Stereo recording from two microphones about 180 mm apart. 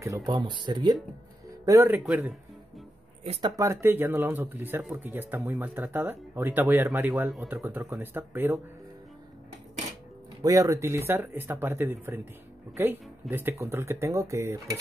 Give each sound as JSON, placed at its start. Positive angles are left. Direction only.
{"t": 0.0, "sound": "speech", "side_deg": -20}
{"t": 1.7, "sound": "speech", "side_deg": -15}
{"t": 3.3, "sound": "speech", "side_deg": -30}
{"t": 3.5, "sound": "speech", "side_deg": -15}
{"t": 10.4, "sound": "speech", "side_deg": -20}